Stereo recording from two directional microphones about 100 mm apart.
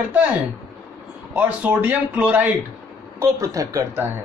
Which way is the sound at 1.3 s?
15° right (ahead or behind).